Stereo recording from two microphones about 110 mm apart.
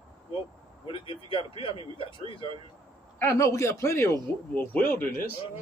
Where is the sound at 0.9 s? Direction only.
50° left (ahead or behind).